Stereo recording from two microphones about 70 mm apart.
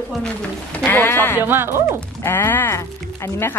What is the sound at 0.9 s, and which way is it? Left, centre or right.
Speech, left.